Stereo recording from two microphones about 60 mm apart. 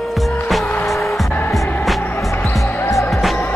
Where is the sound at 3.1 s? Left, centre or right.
Centre.